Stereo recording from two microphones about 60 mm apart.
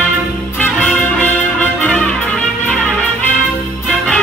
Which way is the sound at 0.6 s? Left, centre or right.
Left.